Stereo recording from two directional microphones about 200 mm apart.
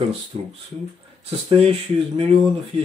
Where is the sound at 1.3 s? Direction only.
30° right (ahead or behind).